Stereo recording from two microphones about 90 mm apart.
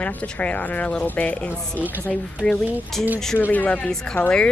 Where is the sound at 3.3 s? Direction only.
15° left (ahead or behind).